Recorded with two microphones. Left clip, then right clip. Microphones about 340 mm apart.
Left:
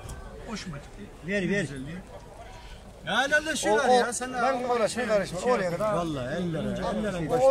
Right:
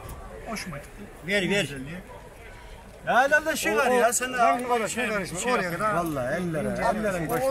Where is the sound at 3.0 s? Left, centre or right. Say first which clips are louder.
Right 4 dB; centre.